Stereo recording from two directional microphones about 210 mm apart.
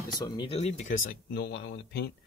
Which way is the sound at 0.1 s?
20° left (ahead or behind).